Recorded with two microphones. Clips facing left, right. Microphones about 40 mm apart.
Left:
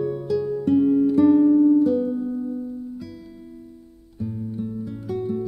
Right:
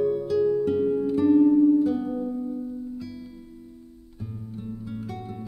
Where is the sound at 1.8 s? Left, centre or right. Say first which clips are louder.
Left 4 dB; centre.